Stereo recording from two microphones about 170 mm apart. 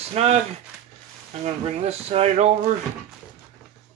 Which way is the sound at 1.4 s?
35° right (ahead or behind).